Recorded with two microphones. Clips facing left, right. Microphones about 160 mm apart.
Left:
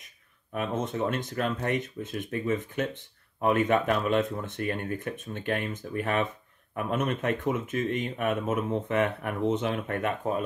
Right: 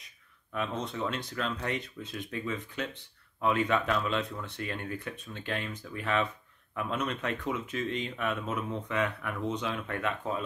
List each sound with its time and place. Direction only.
0.6 s speech: 50° left (ahead or behind)